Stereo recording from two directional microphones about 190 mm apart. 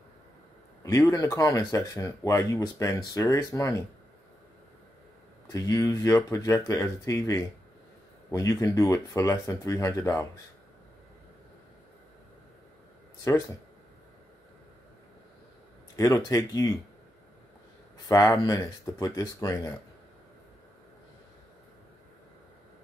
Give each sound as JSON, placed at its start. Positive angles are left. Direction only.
{"t": 0.8, "sound": "speech", "side_deg": 15}
{"t": 5.5, "sound": "speech", "side_deg": 20}
{"t": 16.0, "sound": "speech", "side_deg": 20}
{"t": 18.0, "sound": "speech", "side_deg": 15}